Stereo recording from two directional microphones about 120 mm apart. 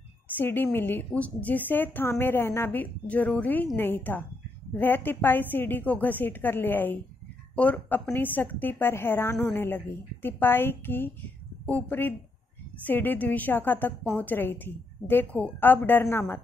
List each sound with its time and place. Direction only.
0.4 s a woman's voice: 15° left (ahead or behind)